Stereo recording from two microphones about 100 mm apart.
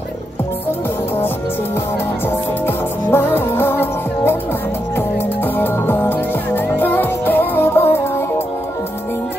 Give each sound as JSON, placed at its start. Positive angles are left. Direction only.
{"t": 2.6, "sound": "music", "side_deg": 20}